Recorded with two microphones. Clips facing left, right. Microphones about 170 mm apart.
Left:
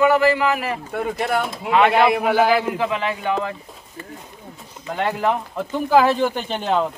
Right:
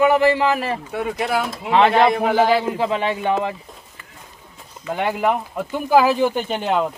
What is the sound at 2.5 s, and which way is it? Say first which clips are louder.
Speech: right 1 dB; 30° right (ahead or behind).